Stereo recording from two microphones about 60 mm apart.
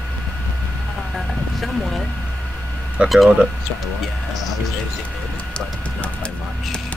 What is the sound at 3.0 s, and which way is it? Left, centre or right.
Speech, right.